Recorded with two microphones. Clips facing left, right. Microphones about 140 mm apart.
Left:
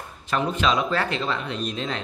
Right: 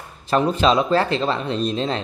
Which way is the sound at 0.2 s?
35° right (ahead or behind).